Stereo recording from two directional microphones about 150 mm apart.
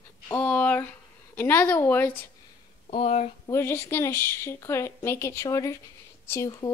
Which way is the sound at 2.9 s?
45° left (ahead or behind).